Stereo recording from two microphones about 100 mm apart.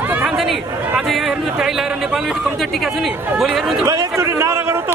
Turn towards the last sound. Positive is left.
turn(degrees=-30)  # may be behind; listen again after turning